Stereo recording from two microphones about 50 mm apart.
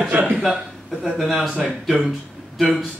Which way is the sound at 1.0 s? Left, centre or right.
Centre.